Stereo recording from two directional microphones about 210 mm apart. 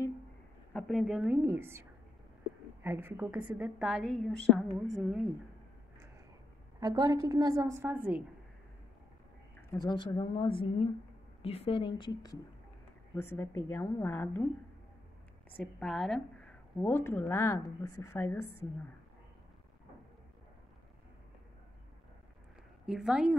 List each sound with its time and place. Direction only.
0.7 s a woman's voice: centre (ahead or behind)
6.8 s a woman's voice: 20° right (ahead or behind)
9.7 s a woman's voice: 20° left (ahead or behind)
15.5 s speech: 5° left (ahead or behind)
22.8 s a woman's voice: 5° right (ahead or behind)